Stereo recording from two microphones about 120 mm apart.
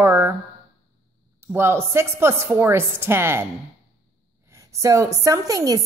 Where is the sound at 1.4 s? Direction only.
20° right (ahead or behind).